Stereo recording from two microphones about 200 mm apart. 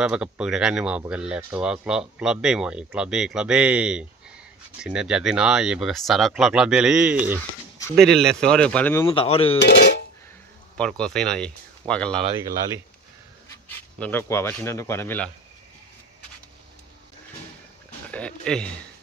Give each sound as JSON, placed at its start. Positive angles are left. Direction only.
{"t": 0.0, "sound": "speech", "side_deg": -5}
{"t": 9.1, "sound": "speech", "side_deg": 25}
{"t": 9.6, "sound": "speech", "side_deg": 55}
{"t": 10.8, "sound": "speech", "side_deg": 5}
{"t": 13.9, "sound": "speech", "side_deg": 10}
{"t": 18.1, "sound": "a sound", "side_deg": 5}